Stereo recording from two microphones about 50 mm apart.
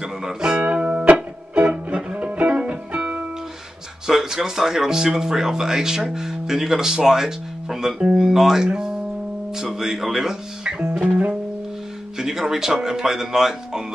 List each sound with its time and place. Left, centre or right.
0.0 s speech: centre
0.7 s music: right
4.1 s speech: centre
11.1 s music: right
12.2 s speech: centre